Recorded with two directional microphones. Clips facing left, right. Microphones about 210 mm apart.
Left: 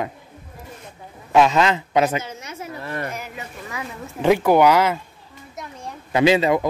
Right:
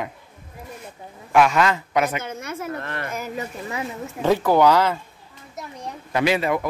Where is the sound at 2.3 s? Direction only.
55° right (ahead or behind).